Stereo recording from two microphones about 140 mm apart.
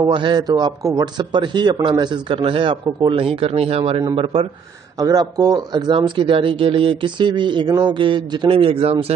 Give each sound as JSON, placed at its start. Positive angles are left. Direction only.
{"t": 0.0, "sound": "a man's voice", "side_deg": -35}
{"t": 5.0, "sound": "a man's voice", "side_deg": -25}